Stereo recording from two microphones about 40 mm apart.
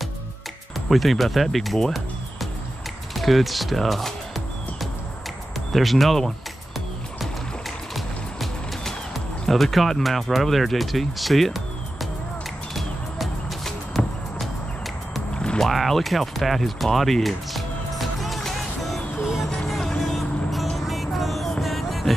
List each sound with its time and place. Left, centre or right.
0.7 s speech: centre
3.2 s speech: centre
5.7 s speech: centre
7.9 s music: centre
13.7 s music: centre
15.3 s music: left
15.6 s speech: centre
18.4 s music: centre
20.1 s vehicle: centre
20.7 s music: centre